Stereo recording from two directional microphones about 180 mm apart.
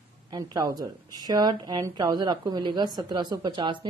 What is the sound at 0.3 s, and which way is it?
A woman's voice, 20° right (ahead or behind).